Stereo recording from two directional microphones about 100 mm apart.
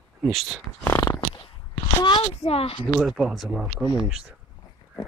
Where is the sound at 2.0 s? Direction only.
50° left (ahead or behind).